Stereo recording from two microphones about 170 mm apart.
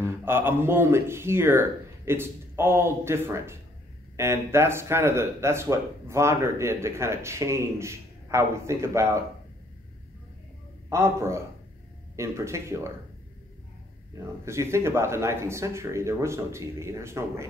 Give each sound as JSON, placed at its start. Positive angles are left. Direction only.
{"t": 0.0, "sound": "speech", "side_deg": -15}
{"t": 10.9, "sound": "speech", "side_deg": -15}
{"t": 14.4, "sound": "speech", "side_deg": -15}